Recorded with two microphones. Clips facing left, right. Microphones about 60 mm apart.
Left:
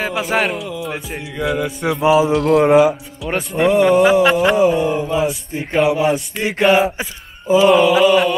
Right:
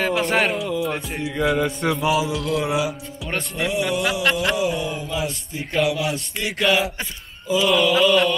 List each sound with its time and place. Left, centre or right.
0.0 s music: centre
2.6 s speech: left
3.5 s speech: left
4.2 s mantra: centre
4.6 s speech: left
7.4 s mantra: left
7.8 s mantra: centre